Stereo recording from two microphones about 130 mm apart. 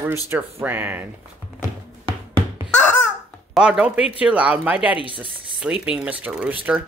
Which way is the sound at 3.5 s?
5° right (ahead or behind).